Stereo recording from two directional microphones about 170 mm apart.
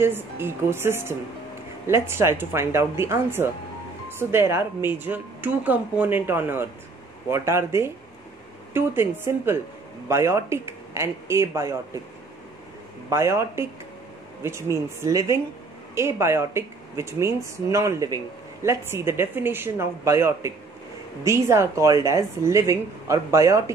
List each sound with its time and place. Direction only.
0.0 s speech: 15° right (ahead or behind)
13.1 s speech: 15° right (ahead or behind)